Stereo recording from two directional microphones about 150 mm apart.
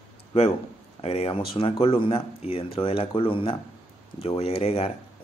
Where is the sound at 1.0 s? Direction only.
40° left (ahead or behind).